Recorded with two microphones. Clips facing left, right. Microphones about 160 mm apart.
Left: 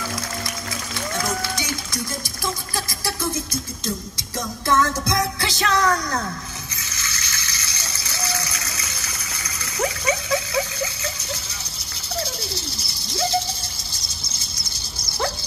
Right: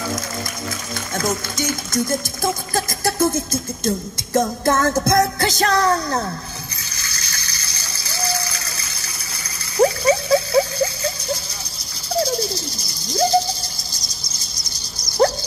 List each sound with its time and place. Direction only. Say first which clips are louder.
1.1 s speech: right 4 dB; 45° right (ahead or behind)
7.0 s ratchet: left 2 dB; 35° right (ahead or behind)
9.8 s a sound: right 8 dB; 35° right (ahead or behind)